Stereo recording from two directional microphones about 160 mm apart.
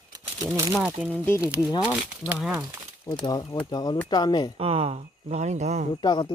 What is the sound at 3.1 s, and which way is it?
Speech, 20° left (ahead or behind).